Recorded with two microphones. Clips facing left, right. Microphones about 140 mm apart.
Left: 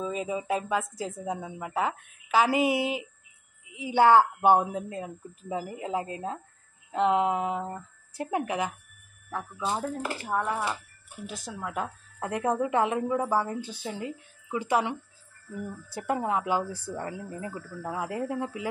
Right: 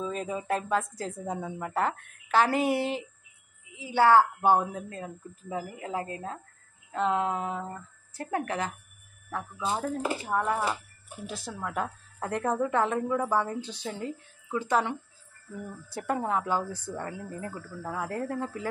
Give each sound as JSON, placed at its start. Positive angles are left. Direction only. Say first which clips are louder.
{"t": 0.0, "sound": "a woman's voice", "louder": "left 2 dB", "side_deg": 5}
{"t": 3.7, "sound": "a woman's voice", "louder": "left 1 dB", "side_deg": 20}
{"t": 16.1, "sound": "a woman's voice", "louder": "left 1 dB", "side_deg": 10}